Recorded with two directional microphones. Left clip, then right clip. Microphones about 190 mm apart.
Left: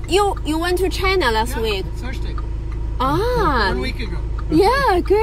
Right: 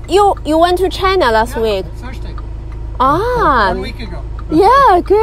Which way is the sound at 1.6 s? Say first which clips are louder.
Right 7 dB; 90° right.